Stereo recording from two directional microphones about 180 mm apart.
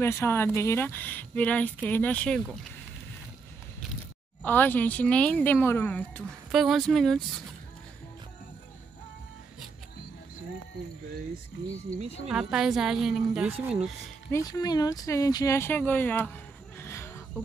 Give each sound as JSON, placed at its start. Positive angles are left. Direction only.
{"t": 0.0, "sound": "speech", "side_deg": 15}
{"t": 4.5, "sound": "speech", "side_deg": 10}
{"t": 6.5, "sound": "a woman's voice", "side_deg": 0}
{"t": 12.3, "sound": "a woman's voice", "side_deg": -5}
{"t": 14.3, "sound": "speech", "side_deg": 20}
{"t": 16.7, "sound": "a sound", "side_deg": 15}